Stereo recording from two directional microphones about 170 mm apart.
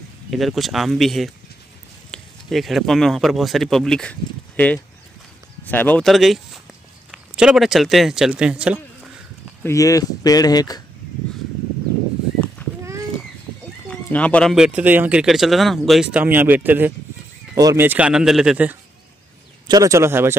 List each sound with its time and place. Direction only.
0.3 s speech: centre (ahead or behind)
9.6 s speech: 15° left (ahead or behind)
12.6 s a sound: 10° left (ahead or behind)
13.8 s speech: 10° left (ahead or behind)
19.7 s speech: 20° right (ahead or behind)